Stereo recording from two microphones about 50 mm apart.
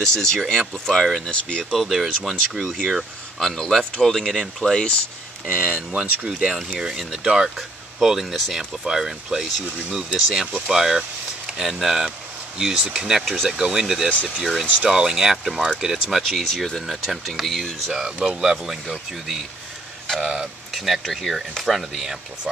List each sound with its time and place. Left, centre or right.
0.0 s speech: centre
1.3 s speech: centre
1.7 s speech: centre
3.3 s speech: centre
5.5 s speech: right
6.9 s speech: centre
16.2 s speech: centre
17.9 s speech: centre
20.7 s speech: centre